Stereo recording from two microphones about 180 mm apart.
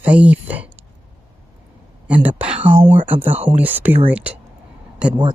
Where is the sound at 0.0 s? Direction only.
10° right (ahead or behind).